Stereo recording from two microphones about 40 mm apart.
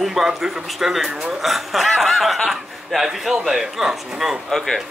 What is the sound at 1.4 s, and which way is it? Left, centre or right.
Speech, centre.